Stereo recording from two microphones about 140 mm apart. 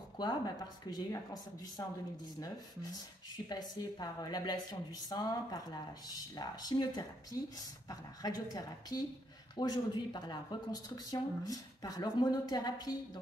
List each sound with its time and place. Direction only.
0.2 s a woman's voice: 30° left (ahead or behind)
3.4 s a woman's voice: 30° left (ahead or behind)